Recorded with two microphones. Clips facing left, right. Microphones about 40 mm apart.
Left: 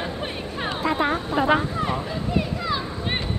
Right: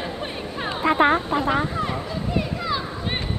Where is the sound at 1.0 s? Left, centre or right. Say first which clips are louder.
Right 8 dB; right.